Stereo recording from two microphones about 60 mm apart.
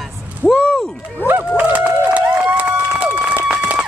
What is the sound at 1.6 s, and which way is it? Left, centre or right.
Run, right.